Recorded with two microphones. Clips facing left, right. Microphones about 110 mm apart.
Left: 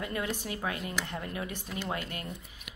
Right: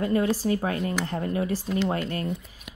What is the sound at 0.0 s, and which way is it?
A woman's voice, 35° right (ahead or behind).